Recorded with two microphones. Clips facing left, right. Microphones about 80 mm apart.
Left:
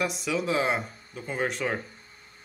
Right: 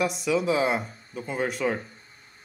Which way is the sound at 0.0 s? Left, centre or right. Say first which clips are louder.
Right 4 dB; centre.